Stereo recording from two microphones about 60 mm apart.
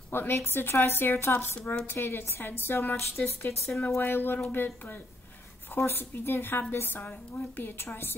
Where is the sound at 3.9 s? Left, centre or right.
Left.